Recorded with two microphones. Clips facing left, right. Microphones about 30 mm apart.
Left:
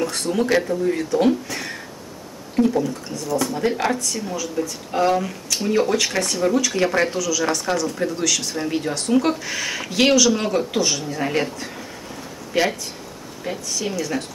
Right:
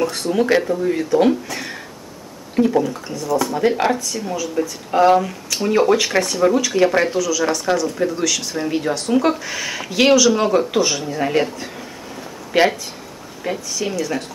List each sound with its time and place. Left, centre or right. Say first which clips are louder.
0.0 s speech: right 3 dB; centre
3.1 s speech: right 3 dB; centre
3.5 s speech: right 4 dB; centre
4.6 s speech: right 6 dB; centre
12.5 s speech: right 5 dB; centre
13.4 s speech: right 3 dB; centre